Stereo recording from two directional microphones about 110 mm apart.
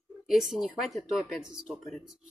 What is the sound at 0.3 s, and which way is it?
Speech, 5° right (ahead or behind).